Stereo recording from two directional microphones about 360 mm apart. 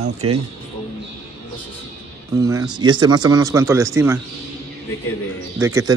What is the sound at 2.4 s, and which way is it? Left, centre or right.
Speech, centre.